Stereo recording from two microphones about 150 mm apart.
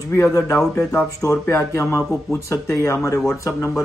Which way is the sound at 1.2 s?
20° left (ahead or behind).